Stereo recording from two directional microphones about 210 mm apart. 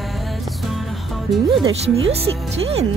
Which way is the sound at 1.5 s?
25° right (ahead or behind).